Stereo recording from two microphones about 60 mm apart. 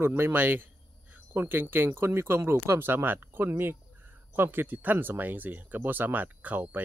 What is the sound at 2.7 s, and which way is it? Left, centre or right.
Speech, right.